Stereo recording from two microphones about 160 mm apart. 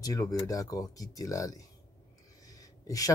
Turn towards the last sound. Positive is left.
turn(degrees=20)  # may be behind; listen again after turning